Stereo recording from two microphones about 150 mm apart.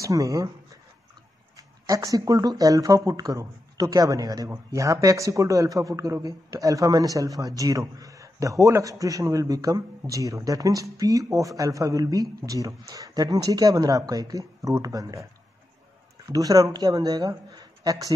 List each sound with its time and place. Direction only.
0.0 s speech: 20° right (ahead or behind)
1.6 s speech: 25° right (ahead or behind)
16.3 s speech: 25° right (ahead or behind)